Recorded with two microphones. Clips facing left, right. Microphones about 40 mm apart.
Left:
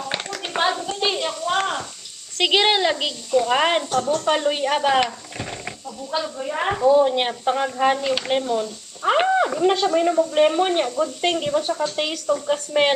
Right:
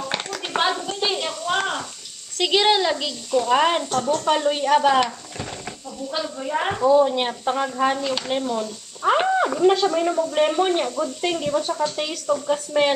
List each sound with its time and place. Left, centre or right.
0.1 s a sound: centre
2.3 s speech: left
3.9 s a woman's voice: centre
4.3 s speech: centre
6.1 s a woman's voice: centre
7.1 s speech: centre
9.4 s a woman's voice: centre